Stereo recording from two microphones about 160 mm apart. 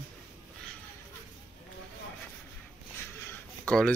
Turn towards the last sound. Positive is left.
turn(degrees=5)  # may be behind; listen again after turning